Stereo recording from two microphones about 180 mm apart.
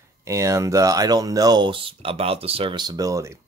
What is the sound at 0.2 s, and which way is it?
Speech, 15° right (ahead or behind).